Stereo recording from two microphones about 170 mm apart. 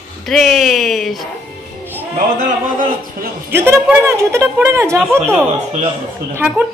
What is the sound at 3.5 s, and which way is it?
A man's voice, 15° right (ahead or behind).